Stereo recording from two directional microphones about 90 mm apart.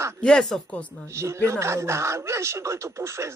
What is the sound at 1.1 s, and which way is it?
Speech, 30° right (ahead or behind).